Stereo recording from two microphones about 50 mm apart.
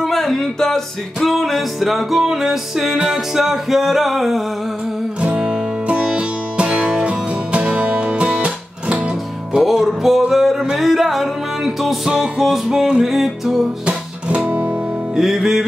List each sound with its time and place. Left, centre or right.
0.0 s music: centre
5.2 s music: centre
9.5 s music: centre
13.8 s guitar: right
15.1 s music: centre